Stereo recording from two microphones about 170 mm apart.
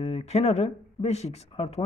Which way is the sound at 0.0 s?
40° left (ahead or behind).